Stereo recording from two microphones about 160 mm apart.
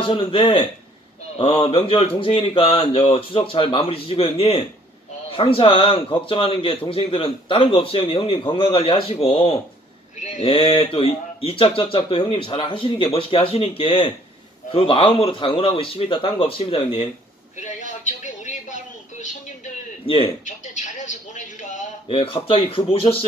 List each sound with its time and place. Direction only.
0.0 s speech: 30° left (ahead or behind)
10.2 s speech: 50° left (ahead or behind)
10.5 s speech: 35° left (ahead or behind)
17.6 s speech: 50° left (ahead or behind)
22.1 s speech: 35° left (ahead or behind)